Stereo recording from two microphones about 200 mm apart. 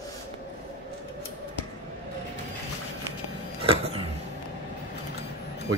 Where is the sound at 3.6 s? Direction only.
30° right (ahead or behind).